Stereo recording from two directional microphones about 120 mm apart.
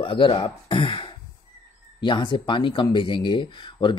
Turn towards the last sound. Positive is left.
turn(degrees=40)  # may be behind; listen again after turning